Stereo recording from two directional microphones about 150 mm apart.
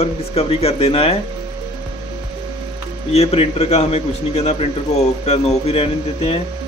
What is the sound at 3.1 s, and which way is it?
A man's voice, 40° left (ahead or behind).